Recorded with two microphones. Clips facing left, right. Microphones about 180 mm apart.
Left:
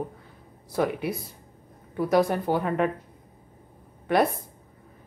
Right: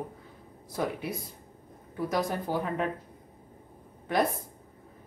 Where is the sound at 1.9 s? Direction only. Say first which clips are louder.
Left 7 dB; 65° left (ahead or behind).